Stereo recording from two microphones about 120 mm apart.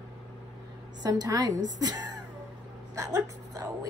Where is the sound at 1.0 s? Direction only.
30° right (ahead or behind).